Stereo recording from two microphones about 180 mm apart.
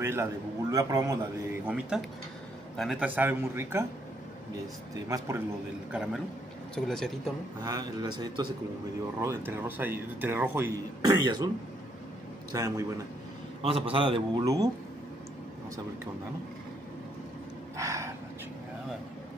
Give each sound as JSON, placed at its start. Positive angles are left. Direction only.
{"t": 0.0, "sound": "speech", "side_deg": -15}
{"t": 1.7, "sound": "speech", "side_deg": -5}
{"t": 5.0, "sound": "speech", "side_deg": -15}
{"t": 5.9, "sound": "speech", "side_deg": 0}
{"t": 7.6, "sound": "a man's voice", "side_deg": -20}
{"t": 9.2, "sound": "speech", "side_deg": -15}
{"t": 11.2, "sound": "a man's voice", "side_deg": -20}
{"t": 12.5, "sound": "a man's voice", "side_deg": -20}
{"t": 13.6, "sound": "a man's voice", "side_deg": -30}
{"t": 17.7, "sound": "gasp", "side_deg": -15}